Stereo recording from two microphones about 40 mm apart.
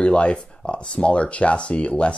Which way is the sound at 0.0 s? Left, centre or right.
Left.